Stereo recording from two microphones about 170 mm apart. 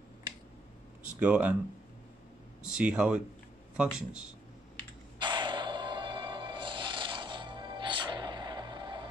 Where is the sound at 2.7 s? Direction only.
5° right (ahead or behind).